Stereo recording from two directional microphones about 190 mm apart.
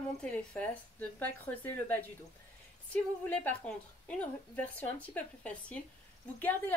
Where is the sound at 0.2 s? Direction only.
5° left (ahead or behind).